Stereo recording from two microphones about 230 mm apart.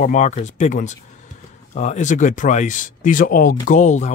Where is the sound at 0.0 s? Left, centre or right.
Left.